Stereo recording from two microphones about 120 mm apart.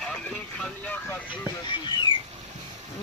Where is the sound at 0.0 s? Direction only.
5° left (ahead or behind).